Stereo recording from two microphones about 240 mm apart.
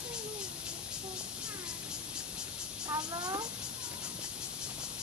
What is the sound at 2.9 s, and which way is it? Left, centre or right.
Speech, centre.